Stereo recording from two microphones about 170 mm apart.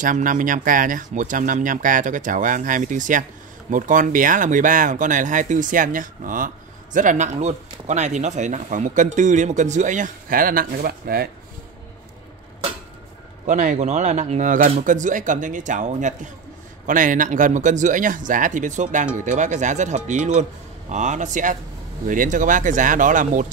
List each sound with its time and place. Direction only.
0.0 s speech: 50° right (ahead or behind)
13.5 s speech: 45° right (ahead or behind)